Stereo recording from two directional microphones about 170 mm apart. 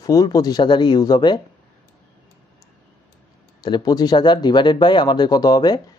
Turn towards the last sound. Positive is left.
turn(degrees=25)  # may be behind; listen again after turning